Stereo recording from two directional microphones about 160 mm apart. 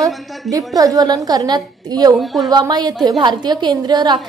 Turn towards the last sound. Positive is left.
turn(degrees=-25)  # may be behind; listen again after turning